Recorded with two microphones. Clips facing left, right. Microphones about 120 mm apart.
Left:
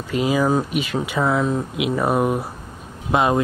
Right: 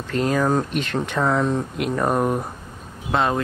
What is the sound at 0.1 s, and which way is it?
Speech, 10° left (ahead or behind).